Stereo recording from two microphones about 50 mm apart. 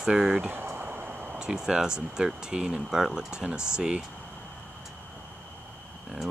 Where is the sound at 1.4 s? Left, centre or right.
Centre.